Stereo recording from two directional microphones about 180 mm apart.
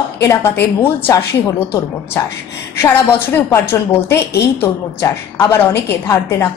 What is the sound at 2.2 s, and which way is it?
Speech, 15° left (ahead or behind).